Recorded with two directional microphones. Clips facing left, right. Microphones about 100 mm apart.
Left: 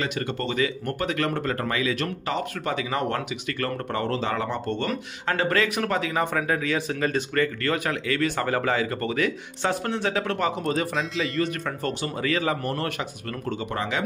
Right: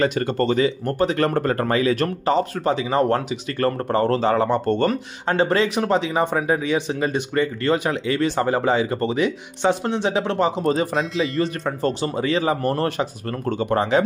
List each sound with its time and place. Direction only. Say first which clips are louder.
0.0 s speech: right 8 dB; 45° right (ahead or behind)
0.7 s speech: right 7 dB; 30° right (ahead or behind)
5.3 s speech: right 5 dB; 25° right (ahead or behind)
13.5 s speech: right 9 dB; 45° right (ahead or behind)